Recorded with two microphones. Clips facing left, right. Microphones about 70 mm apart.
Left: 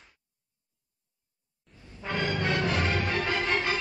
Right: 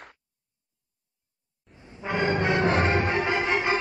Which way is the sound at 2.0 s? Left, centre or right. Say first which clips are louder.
Right 5 dB; right.